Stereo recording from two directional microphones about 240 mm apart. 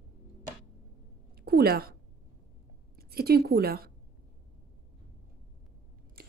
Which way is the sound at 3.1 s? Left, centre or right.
Right.